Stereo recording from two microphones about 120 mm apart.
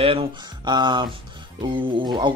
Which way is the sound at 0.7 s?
40° right (ahead or behind).